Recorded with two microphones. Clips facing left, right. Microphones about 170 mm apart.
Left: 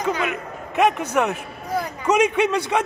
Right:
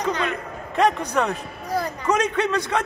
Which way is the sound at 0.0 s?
5° left (ahead or behind).